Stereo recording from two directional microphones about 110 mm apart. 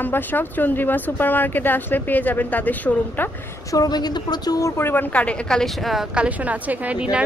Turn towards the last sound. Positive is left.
turn(degrees=-10)  # may be behind; listen again after turning